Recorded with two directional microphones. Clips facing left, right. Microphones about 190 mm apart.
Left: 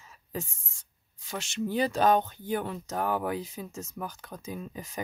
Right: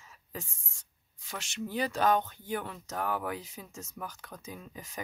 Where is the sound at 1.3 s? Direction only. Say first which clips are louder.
Left 6 dB; 25° left (ahead or behind).